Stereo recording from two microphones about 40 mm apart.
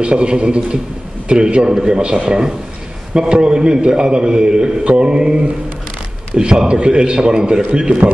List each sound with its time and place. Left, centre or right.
0.0 s a man's voice: right